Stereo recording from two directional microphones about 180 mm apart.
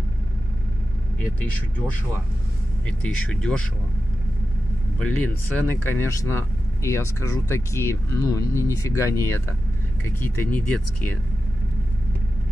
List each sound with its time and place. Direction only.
2.9 s speech: 5° left (ahead or behind)
4.9 s speech: 5° left (ahead or behind)